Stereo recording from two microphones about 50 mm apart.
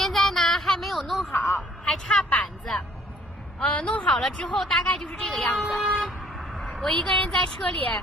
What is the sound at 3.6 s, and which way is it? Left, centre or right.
Speech, left.